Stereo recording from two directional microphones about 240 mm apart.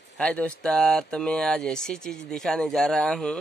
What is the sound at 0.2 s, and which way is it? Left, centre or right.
Speech, centre.